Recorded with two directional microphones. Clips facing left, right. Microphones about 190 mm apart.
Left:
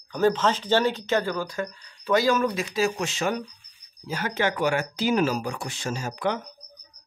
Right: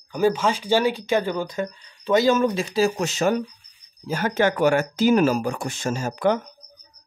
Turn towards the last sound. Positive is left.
turn(degrees=-45)  # may be behind; listen again after turning